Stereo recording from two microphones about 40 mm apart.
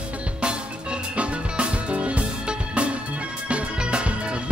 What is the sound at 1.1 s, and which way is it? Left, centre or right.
Music, right.